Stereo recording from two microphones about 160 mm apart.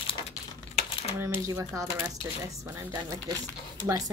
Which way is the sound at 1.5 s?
20° right (ahead or behind).